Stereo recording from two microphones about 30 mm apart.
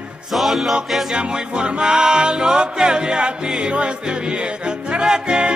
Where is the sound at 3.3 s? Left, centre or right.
Right.